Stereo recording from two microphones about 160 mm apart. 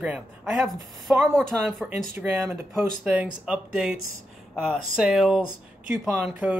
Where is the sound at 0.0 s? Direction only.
5° right (ahead or behind).